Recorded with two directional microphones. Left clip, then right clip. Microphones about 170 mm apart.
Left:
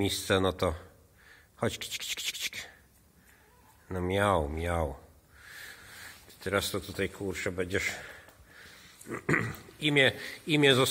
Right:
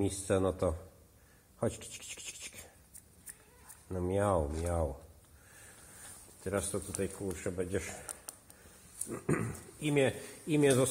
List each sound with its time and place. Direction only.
0.0 s speech: 10° left (ahead or behind)
3.9 s speech: 15° left (ahead or behind)
6.4 s speech: 10° left (ahead or behind)
9.1 s speech: 15° left (ahead or behind)